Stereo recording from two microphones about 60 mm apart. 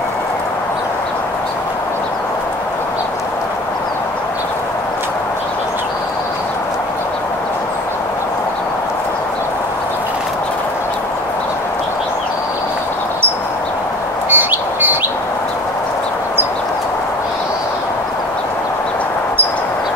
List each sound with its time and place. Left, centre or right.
14.3 s bird: right